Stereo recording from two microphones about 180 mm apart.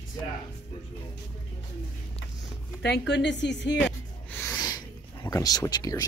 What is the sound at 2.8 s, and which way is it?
Speech, 70° left (ahead or behind).